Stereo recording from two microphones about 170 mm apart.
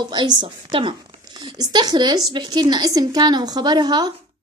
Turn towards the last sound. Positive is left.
turn(degrees=-25)  # may be behind; listen again after turning